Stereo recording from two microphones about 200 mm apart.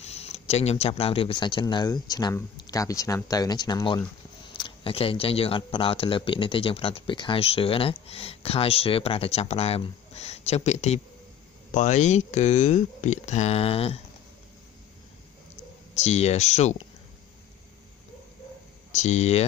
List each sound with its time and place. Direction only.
0.0 s speech: 30° left (ahead or behind)
15.9 s speech: 35° left (ahead or behind)
18.9 s speech: 35° left (ahead or behind)